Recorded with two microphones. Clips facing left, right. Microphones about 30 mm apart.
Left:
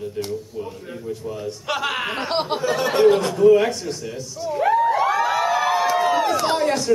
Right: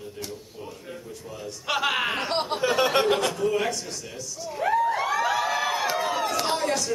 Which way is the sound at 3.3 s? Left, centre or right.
Centre.